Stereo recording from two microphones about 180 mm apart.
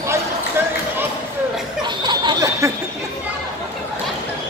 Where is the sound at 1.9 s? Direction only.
25° right (ahead or behind).